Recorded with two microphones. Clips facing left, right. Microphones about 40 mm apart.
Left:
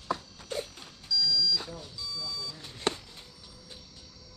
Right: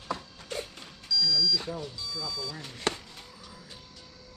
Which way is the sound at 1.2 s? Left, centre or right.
Right.